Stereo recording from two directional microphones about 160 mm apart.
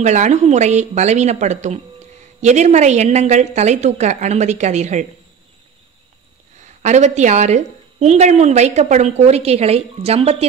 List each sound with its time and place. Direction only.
0.0 s speech: 45° right (ahead or behind)
6.8 s speech: 45° right (ahead or behind)